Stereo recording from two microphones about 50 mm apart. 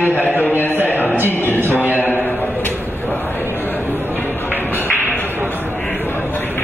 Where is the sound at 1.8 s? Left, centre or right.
Right.